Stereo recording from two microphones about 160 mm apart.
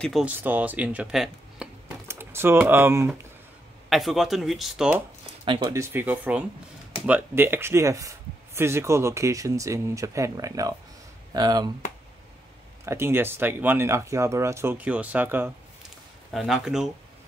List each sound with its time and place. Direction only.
0.0 s speech: centre (ahead or behind)
0.3 s speech: 10° right (ahead or behind)
2.0 s typing: 15° right (ahead or behind)
2.6 s speech: 15° right (ahead or behind)
3.9 s speech: centre (ahead or behind)
5.4 s speech: 30° right (ahead or behind)
5.7 s speech: 15° right (ahead or behind)
12.8 s speech: 15° right (ahead or behind)
16.3 s speech: centre (ahead or behind)